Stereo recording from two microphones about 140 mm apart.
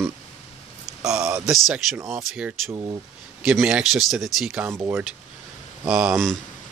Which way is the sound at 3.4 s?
5° right (ahead or behind).